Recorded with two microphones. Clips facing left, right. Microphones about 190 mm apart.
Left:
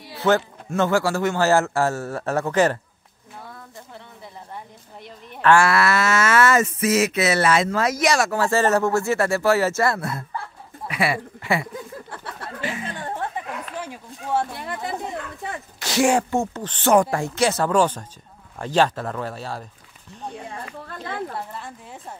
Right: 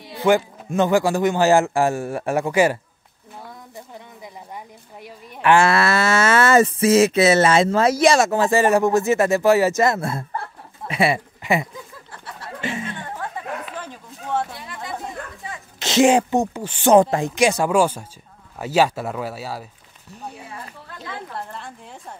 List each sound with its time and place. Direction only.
0.2 s a man's voice: 15° right (ahead or behind)
5.0 s speech: 15° right (ahead or behind)
13.7 s a sound: 10° left (ahead or behind)
15.8 s a man's voice: 20° right (ahead or behind)
16.9 s a man's voice: 20° right (ahead or behind)
21.5 s a woman's voice: 5° left (ahead or behind)